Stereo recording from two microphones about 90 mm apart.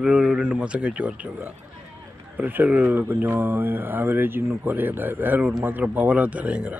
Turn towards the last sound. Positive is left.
turn(degrees=-15)  # may be behind; listen again after turning